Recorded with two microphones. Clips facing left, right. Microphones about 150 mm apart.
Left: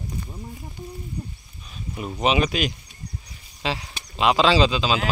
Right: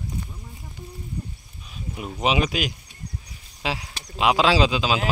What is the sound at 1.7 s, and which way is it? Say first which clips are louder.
Speech: left 1 dB; 5° right (ahead or behind).